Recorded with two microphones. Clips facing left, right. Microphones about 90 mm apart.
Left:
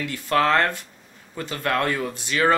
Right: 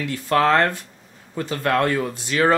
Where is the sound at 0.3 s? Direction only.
15° right (ahead or behind).